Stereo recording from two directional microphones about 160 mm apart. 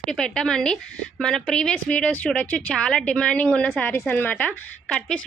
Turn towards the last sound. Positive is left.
turn(degrees=10)  # may be behind; listen again after turning